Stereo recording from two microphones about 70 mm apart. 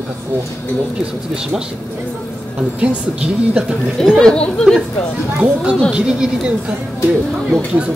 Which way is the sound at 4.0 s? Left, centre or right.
Centre.